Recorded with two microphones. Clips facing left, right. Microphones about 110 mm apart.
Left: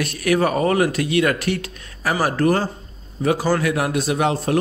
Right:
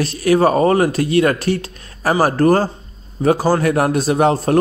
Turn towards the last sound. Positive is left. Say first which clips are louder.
# right 5 dB
turn(degrees=-40)  # may be behind; listen again after turning